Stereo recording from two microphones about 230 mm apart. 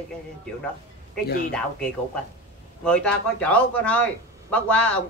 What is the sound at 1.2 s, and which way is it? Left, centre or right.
Speech, left.